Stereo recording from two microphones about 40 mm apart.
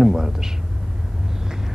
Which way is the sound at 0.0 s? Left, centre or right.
Centre.